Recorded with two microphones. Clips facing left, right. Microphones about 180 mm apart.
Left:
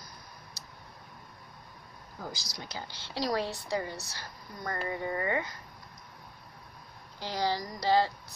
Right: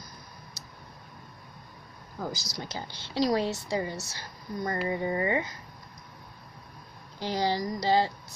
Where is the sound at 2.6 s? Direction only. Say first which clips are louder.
Right 3 dB; 20° right (ahead or behind).